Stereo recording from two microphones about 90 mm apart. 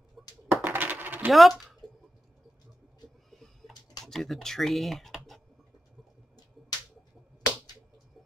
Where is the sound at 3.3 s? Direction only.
Centre (ahead or behind).